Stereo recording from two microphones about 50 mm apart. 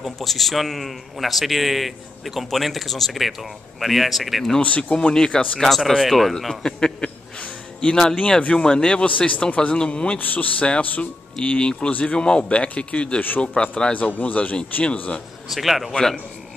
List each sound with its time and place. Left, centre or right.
0.0 s a man's voice: centre
4.6 s speech: left
5.1 s speech: centre
5.8 s speech: centre; by 10.1 s left
10.1 s speech: left; by 13.9 s centre
13.9 s speech: left
15.4 s a man's voice: centre
15.9 s speech: centre